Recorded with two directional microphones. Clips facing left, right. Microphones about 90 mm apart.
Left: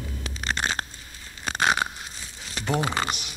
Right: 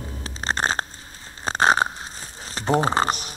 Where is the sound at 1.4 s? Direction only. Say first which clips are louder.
Right 5 dB; 35° right (ahead or behind).